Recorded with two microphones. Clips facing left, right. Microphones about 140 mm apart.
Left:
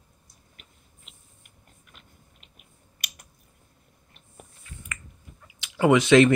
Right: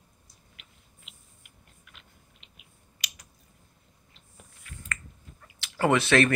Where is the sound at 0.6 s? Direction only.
40° left (ahead or behind).